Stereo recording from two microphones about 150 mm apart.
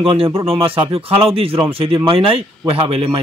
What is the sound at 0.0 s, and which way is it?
A man's voice, 35° right (ahead or behind).